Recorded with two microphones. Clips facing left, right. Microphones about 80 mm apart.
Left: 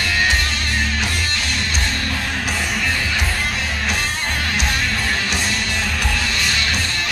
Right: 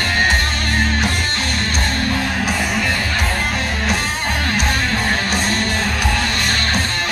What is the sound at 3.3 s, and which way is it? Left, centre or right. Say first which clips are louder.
Music: right 3 dB; right.